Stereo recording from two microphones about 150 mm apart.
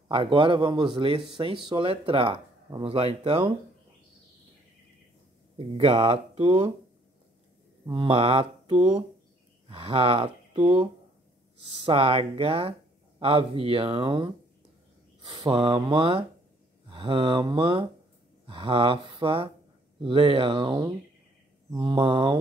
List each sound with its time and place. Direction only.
0.1 s speech: 35° right (ahead or behind)
5.8 s speech: 40° right (ahead or behind)
7.9 s speech: 35° right (ahead or behind)
15.3 s mantra: 25° right (ahead or behind)
15.6 s speech: 35° right (ahead or behind)